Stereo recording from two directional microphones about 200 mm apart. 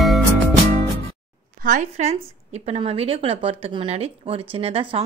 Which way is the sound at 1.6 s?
40° right (ahead or behind).